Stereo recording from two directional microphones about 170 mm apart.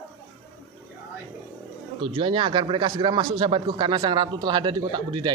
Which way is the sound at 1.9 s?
30° right (ahead or behind).